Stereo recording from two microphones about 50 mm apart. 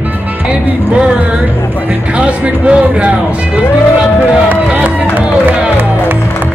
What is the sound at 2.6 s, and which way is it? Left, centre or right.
Speech, right.